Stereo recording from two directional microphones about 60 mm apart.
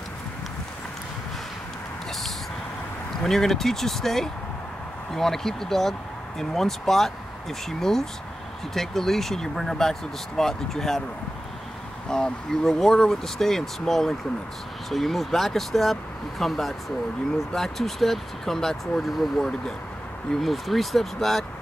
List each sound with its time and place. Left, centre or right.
3.3 s speech: centre
12.1 s speech: centre